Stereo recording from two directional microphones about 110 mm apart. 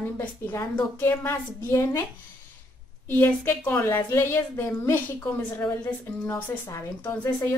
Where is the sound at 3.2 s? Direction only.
20° left (ahead or behind).